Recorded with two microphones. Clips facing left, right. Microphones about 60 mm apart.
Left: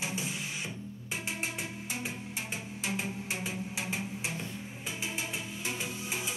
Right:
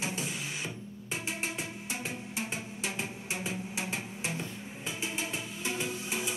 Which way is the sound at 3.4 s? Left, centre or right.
Right.